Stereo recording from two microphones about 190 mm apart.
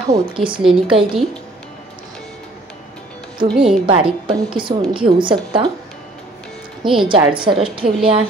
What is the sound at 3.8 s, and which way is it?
A woman's voice, 25° right (ahead or behind).